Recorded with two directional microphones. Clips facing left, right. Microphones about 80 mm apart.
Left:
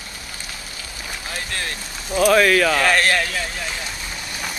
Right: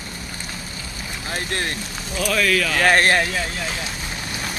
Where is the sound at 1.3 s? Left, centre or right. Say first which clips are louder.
Right 4 dB; right.